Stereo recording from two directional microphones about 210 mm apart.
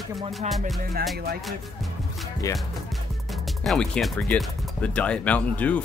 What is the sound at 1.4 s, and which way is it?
Music, centre (ahead or behind).